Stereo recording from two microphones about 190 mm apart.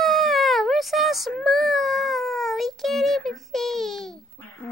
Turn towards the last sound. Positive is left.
turn(degrees=5)  # may be behind; listen again after turning